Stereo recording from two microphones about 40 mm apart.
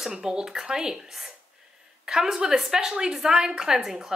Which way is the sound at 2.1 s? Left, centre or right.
Centre.